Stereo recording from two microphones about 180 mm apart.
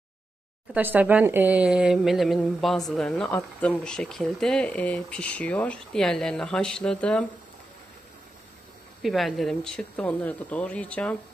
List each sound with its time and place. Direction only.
0.7 s speech: 10° right (ahead or behind); by 7.2 s 5° left (ahead or behind)
9.0 s speech: centre (ahead or behind)